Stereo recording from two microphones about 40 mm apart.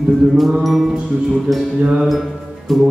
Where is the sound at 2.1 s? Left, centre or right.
Centre.